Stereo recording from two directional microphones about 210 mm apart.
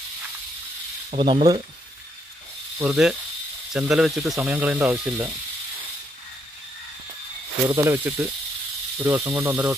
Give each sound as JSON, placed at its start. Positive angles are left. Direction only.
{"t": 1.1, "sound": "speech", "side_deg": -25}
{"t": 2.8, "sound": "speech", "side_deg": -5}
{"t": 7.6, "sound": "speech", "side_deg": -15}